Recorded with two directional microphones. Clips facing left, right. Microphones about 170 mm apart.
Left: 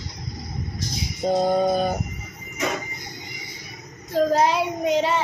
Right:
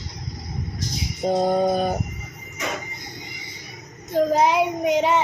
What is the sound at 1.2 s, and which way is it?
Music, 15° right (ahead or behind).